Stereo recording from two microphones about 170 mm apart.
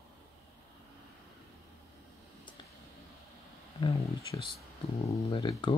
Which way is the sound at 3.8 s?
35° left (ahead or behind).